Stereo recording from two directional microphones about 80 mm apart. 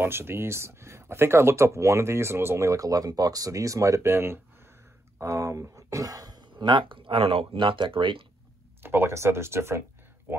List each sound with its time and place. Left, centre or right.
0.0 s speech: right
6.5 s speech: right
8.8 s speech: right